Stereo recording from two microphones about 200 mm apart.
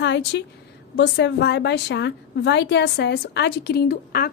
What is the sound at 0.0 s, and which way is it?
A woman's voice, 60° left (ahead or behind).